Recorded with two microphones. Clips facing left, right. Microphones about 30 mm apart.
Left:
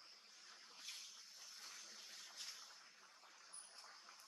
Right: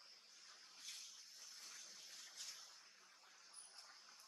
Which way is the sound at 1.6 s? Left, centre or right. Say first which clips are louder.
Left 3 dB; left.